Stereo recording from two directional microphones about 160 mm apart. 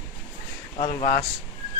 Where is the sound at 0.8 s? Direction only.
30° left (ahead or behind).